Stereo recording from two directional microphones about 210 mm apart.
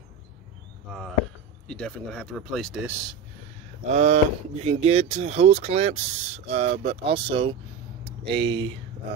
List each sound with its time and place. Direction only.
1.7 s speech: 5° left (ahead or behind)
3.9 s speech: 35° right (ahead or behind)